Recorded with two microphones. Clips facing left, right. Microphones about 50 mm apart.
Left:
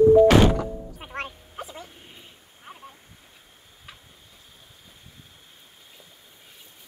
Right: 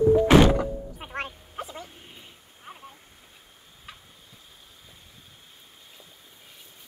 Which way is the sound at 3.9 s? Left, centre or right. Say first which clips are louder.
Right 1 dB; centre.